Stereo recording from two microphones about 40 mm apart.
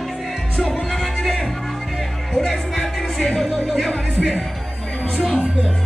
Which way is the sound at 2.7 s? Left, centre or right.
Centre.